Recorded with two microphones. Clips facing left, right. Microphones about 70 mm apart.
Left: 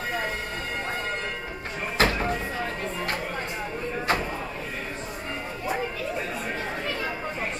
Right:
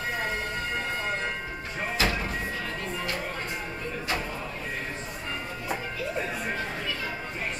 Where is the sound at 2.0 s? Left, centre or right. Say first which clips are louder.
Left 5 dB; left.